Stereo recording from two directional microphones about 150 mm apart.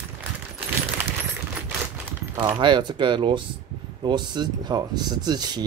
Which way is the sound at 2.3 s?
30° right (ahead or behind).